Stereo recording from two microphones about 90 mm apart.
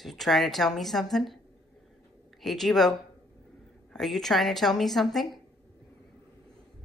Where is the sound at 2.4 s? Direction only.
5° left (ahead or behind).